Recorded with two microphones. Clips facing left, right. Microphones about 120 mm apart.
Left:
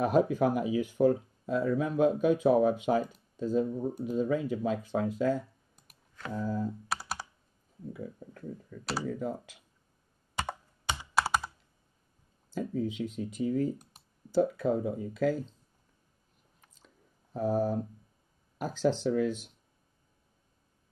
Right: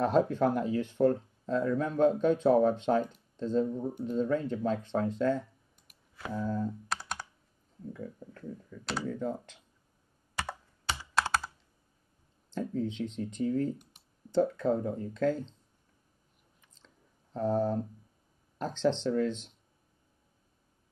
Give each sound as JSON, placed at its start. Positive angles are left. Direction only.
{"t": 0.0, "sound": "speech", "side_deg": 10}
{"t": 6.3, "sound": "computer keyboard", "side_deg": 5}
{"t": 7.9, "sound": "speech", "side_deg": 5}
{"t": 11.1, "sound": "computer keyboard", "side_deg": 10}
{"t": 12.4, "sound": "speech", "side_deg": 5}
{"t": 16.7, "sound": "a sound", "side_deg": 10}
{"t": 18.6, "sound": "speech", "side_deg": 10}